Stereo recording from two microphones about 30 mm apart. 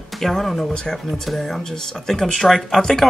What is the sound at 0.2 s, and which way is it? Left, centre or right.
Speech, centre.